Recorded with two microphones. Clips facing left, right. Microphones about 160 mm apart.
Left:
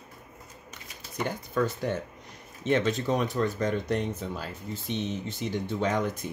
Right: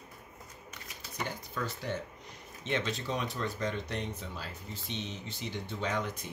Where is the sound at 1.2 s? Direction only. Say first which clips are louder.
Left 10 dB; 50° left (ahead or behind).